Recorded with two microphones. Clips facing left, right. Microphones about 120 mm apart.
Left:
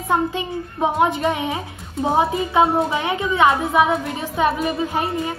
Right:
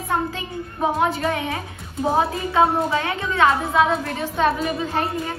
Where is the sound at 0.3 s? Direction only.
20° left (ahead or behind).